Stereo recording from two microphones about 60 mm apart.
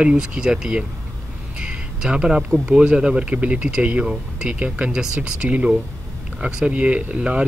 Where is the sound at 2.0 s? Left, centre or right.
Centre.